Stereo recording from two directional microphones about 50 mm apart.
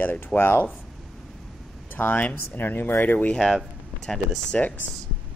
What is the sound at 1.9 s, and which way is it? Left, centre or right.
Speech, left.